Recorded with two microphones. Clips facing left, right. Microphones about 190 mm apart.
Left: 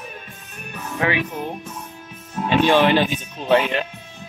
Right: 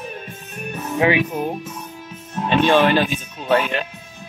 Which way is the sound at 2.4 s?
15° left (ahead or behind).